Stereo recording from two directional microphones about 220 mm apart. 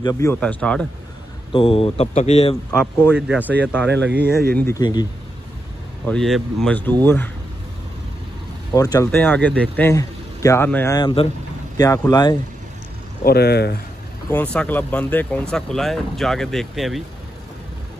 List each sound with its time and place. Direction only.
0.0 s speech: 15° left (ahead or behind)
1.5 s speech: 25° left (ahead or behind)
3.2 s speech: 5° right (ahead or behind)
3.8 s speech: 50° right (ahead or behind)
4.6 s speech: 15° left (ahead or behind)
6.0 s speech: centre (ahead or behind)
8.7 s speech: 15° left (ahead or behind)
13.2 s speech: 45° left (ahead or behind)
14.3 s speech: 5° left (ahead or behind)